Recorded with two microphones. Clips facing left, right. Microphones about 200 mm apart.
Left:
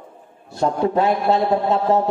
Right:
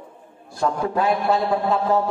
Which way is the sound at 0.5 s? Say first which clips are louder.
Left 4 dB; 25° left (ahead or behind).